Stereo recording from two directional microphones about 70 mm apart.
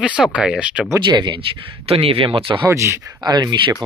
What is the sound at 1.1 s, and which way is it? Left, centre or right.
Speech, right.